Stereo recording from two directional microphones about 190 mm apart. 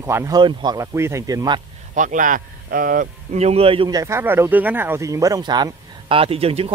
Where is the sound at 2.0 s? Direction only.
45° right (ahead or behind); by 4.0 s 30° right (ahead or behind).